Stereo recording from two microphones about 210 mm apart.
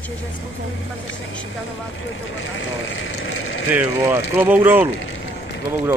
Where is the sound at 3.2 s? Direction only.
75° left (ahead or behind).